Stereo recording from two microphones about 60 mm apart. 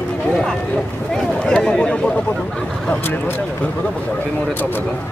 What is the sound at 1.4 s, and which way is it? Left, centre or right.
Speech, centre.